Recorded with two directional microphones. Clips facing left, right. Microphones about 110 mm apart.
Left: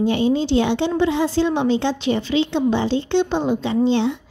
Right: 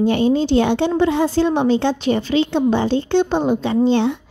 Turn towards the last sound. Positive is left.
turn(degrees=-50)  # may be behind; listen again after turning